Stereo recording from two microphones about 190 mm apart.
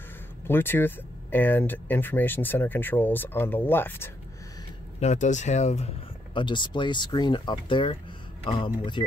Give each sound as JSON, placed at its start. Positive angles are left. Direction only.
{"t": 0.5, "sound": "speech", "side_deg": 10}
{"t": 5.0, "sound": "speech", "side_deg": 40}
{"t": 6.3, "sound": "speech", "side_deg": 25}